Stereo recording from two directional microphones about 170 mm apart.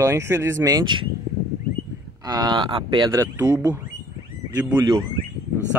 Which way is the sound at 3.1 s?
15° right (ahead or behind).